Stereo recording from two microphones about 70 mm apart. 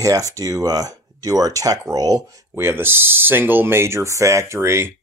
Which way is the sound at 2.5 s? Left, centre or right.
Right.